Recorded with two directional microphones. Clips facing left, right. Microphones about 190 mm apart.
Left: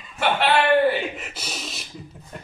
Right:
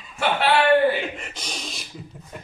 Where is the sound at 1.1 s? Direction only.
5° left (ahead or behind).